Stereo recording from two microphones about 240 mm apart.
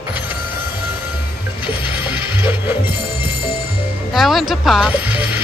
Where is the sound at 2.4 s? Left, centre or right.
Centre.